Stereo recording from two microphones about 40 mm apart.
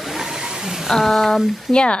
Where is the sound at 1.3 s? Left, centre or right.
Centre.